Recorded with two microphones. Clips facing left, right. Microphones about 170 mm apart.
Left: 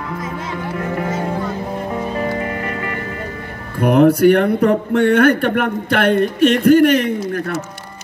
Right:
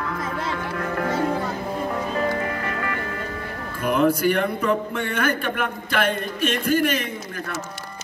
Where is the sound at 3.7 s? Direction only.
65° left (ahead or behind).